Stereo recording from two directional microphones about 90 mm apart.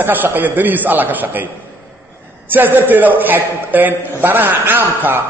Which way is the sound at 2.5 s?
20° right (ahead or behind).